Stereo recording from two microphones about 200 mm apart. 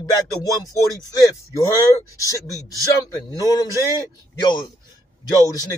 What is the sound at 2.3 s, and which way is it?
Speech, 15° right (ahead or behind).